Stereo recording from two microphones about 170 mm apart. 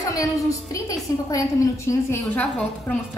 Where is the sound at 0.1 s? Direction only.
20° left (ahead or behind).